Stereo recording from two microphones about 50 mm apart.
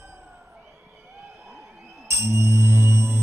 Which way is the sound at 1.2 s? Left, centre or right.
Right.